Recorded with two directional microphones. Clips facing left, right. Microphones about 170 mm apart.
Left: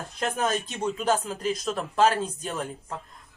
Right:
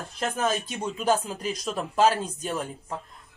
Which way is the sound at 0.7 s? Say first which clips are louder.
Even; 10° right (ahead or behind).